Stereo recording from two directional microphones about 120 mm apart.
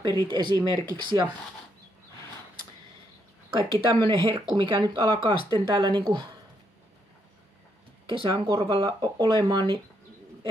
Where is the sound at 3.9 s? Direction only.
50° right (ahead or behind).